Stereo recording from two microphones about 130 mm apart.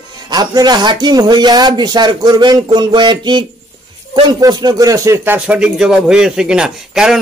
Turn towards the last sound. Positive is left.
turn(degrees=-5)  # may be behind; listen again after turning